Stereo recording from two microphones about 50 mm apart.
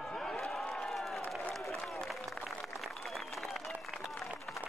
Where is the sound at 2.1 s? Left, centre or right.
Centre.